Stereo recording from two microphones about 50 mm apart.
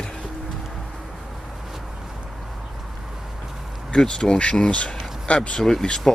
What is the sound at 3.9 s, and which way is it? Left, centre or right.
Speech, centre.